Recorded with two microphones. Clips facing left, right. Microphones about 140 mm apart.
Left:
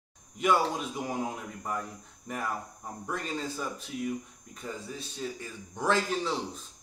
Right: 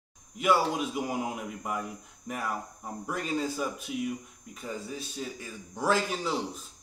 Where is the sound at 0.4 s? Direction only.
5° right (ahead or behind).